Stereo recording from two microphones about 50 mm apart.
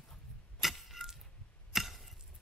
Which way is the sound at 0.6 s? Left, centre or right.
Centre.